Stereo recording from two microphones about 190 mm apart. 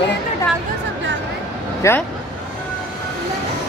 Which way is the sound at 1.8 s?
15° left (ahead or behind).